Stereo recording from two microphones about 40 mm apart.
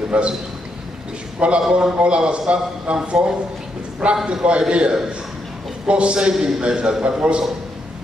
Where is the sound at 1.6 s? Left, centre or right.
Centre.